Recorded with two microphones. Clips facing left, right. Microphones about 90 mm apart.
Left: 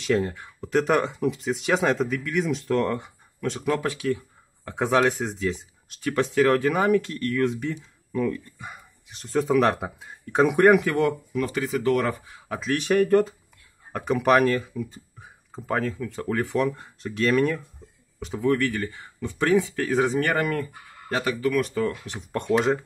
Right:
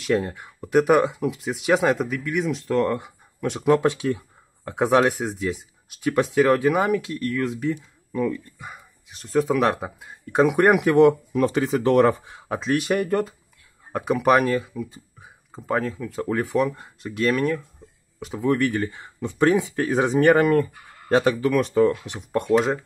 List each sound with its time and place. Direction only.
0.0 s speech: 5° right (ahead or behind)
3.3 s speech: 15° right (ahead or behind)
5.1 s speech: 5° right (ahead or behind)
10.8 s speech: 20° right (ahead or behind)
12.7 s speech: 5° right (ahead or behind)
18.4 s speech: 20° right (ahead or behind)
22.4 s speech: centre (ahead or behind)